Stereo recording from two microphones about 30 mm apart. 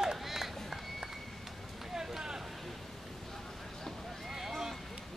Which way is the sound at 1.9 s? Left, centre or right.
Centre.